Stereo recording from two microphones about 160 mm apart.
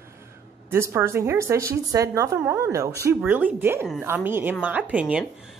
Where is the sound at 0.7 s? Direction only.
15° right (ahead or behind).